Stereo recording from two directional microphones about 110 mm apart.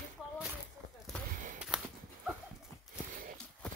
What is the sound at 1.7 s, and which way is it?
Dog, 5° right (ahead or behind).